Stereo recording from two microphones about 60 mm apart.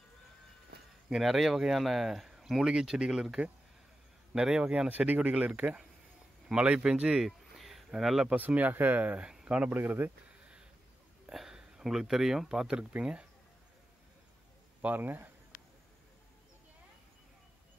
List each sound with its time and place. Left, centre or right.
1.0 s speech: centre
4.8 s speech: right
6.5 s speech: centre
7.5 s a sound: centre
8.4 s speech: right
9.3 s a sound: centre
9.7 s speech: right
11.2 s speech: centre
14.8 s speech: right